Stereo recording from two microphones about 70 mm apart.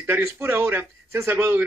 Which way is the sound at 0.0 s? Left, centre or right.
Right.